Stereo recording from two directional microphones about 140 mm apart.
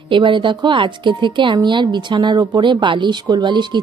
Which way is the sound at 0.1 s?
35° right (ahead or behind).